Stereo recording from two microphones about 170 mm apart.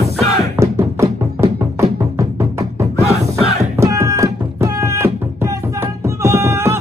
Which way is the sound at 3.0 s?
40° right (ahead or behind).